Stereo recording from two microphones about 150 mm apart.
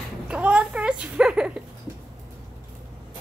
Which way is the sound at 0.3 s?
5° right (ahead or behind).